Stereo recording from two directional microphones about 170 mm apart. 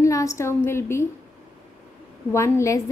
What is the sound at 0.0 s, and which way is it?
A woman's voice, 20° left (ahead or behind).